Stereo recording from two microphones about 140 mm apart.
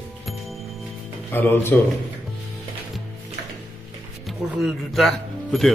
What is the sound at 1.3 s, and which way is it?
Speech, 15° left (ahead or behind).